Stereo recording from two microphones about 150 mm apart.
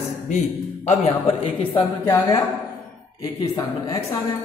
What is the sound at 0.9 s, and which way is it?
Speech, 35° left (ahead or behind).